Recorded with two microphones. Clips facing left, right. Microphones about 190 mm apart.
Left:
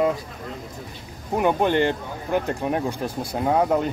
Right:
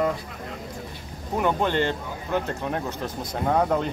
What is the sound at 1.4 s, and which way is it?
Speech, 15° left (ahead or behind).